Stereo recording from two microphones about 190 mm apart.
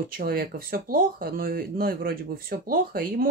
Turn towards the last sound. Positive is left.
turn(degrees=-50)  # may be behind; listen again after turning